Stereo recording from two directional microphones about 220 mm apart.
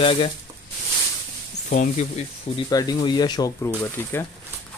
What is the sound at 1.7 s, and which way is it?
Speech, 30° left (ahead or behind).